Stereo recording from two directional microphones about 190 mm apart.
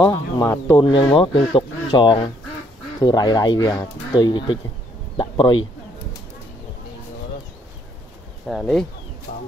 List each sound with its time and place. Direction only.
0.1 s speech: 15° left (ahead or behind)
8.5 s speech: centre (ahead or behind)
9.3 s a sound: 50° left (ahead or behind)